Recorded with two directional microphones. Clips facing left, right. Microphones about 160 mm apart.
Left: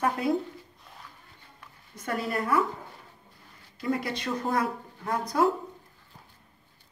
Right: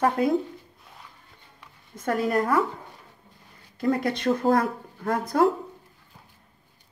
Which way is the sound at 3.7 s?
50° right (ahead or behind).